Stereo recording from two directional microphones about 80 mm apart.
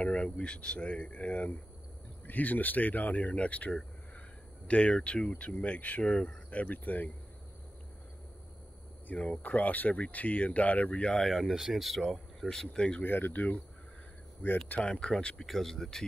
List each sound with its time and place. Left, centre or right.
0.0 s speech: centre
9.0 s speech: centre
13.0 s speech: left
14.8 s speech: centre